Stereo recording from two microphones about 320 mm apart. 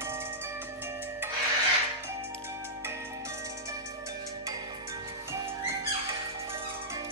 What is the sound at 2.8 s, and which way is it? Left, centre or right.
Music, centre.